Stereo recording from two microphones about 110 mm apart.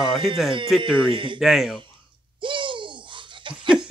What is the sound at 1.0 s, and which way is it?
Speech, 50° right (ahead or behind).